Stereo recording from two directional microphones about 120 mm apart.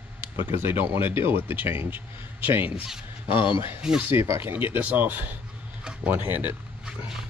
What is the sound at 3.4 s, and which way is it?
Speech, 45° left (ahead or behind).